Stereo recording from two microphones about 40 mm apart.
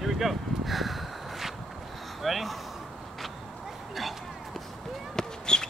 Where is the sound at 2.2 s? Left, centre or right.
Centre.